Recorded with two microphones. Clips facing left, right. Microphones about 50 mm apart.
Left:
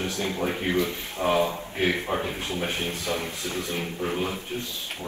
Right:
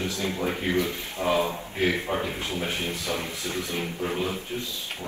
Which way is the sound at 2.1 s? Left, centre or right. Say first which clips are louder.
Even; left.